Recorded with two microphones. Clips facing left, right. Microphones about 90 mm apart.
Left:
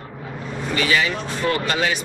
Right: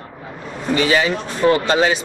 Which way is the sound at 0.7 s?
30° right (ahead or behind).